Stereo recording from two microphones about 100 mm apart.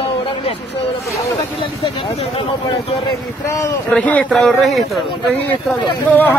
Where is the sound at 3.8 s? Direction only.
15° left (ahead or behind).